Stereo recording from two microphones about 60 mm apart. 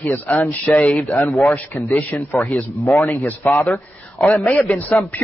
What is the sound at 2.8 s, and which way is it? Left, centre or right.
Speech, left.